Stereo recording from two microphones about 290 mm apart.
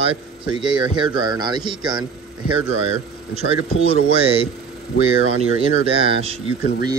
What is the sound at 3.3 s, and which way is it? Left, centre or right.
Speech, right.